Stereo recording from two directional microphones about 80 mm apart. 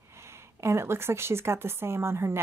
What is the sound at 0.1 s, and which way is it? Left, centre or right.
Speech, right.